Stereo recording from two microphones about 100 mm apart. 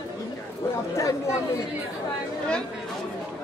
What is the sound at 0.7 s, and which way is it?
Chatter, 30° left (ahead or behind).